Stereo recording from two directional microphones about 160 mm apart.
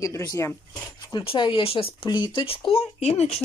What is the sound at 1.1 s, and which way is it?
Speech, 30° left (ahead or behind).